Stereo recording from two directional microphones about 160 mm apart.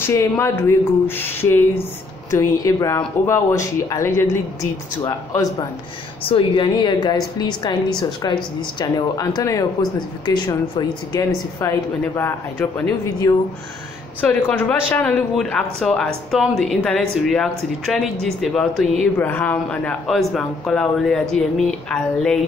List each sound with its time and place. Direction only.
0.0 s a woman's voice: 15° left (ahead or behind)
6.2 s a woman's voice: 35° left (ahead or behind); by 22.4 s 5° left (ahead or behind)